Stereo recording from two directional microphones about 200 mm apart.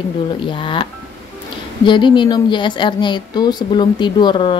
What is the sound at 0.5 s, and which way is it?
Speech, 25° left (ahead or behind).